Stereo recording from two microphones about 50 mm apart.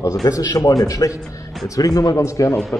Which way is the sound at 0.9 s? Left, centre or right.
Left.